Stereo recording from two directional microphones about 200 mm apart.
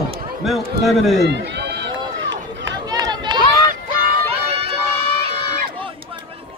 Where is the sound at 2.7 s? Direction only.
20° right (ahead or behind).